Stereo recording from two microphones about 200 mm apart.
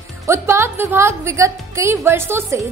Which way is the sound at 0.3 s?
15° right (ahead or behind).